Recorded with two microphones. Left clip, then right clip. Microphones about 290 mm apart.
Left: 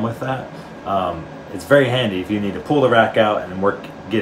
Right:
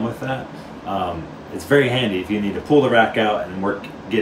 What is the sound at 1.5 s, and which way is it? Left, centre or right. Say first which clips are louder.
Speech: left 2 dB; centre.